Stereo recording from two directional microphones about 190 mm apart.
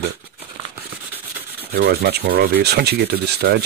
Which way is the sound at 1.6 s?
55° right (ahead or behind).